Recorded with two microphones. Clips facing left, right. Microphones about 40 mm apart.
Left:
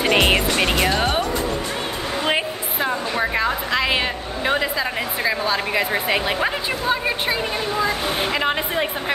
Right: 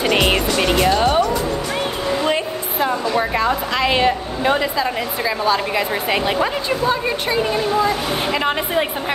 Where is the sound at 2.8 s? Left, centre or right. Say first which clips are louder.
Right 3 dB; centre.